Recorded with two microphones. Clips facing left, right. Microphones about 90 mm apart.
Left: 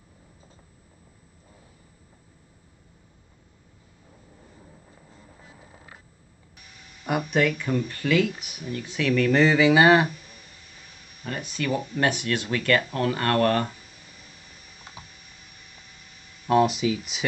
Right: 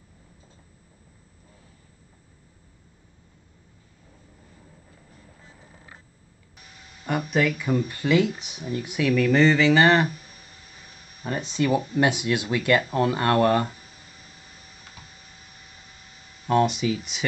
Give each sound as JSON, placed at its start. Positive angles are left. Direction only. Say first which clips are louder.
{"t": 7.1, "sound": "speech", "louder": "even", "side_deg": 0}
{"t": 8.0, "sound": "speech", "louder": "right 1 dB", "side_deg": -20}
{"t": 11.2, "sound": "speech", "louder": "right 4 dB", "side_deg": -25}
{"t": 16.4, "sound": "speech", "louder": "left 1 dB", "side_deg": 5}